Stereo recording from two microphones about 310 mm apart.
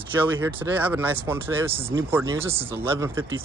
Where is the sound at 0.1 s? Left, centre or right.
Centre.